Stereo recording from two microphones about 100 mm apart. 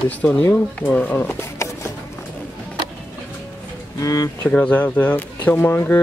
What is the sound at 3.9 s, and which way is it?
Speech, 35° left (ahead or behind).